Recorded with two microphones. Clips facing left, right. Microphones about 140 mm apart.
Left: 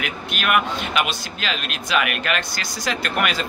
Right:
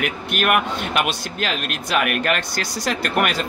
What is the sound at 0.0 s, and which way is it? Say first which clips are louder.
A man's voice: right 4 dB; 50° right (ahead or behind).